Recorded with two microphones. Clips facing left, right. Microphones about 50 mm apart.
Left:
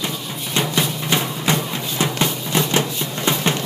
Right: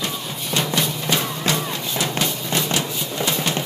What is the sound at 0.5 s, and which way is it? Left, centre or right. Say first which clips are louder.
Music: left 1 dB; centre.